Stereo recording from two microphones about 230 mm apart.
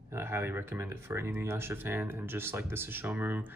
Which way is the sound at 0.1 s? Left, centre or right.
Centre.